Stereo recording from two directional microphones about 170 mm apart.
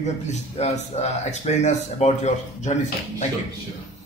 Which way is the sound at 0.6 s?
40° left (ahead or behind).